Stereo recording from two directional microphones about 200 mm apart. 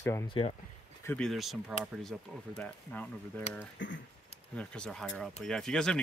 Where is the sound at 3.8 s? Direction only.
70° left (ahead or behind).